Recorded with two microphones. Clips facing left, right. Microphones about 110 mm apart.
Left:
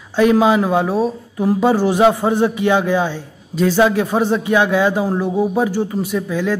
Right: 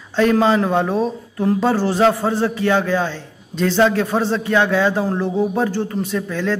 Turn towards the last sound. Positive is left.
turn(degrees=10)  # may be behind; listen again after turning